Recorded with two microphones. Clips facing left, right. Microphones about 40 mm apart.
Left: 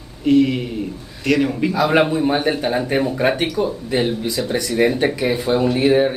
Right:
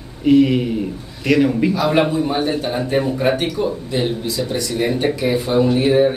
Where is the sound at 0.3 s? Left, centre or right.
Centre.